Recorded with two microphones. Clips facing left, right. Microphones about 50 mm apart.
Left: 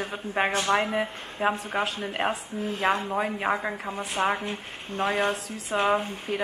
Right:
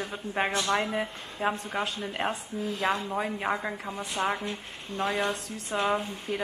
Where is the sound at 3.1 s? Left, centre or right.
Centre.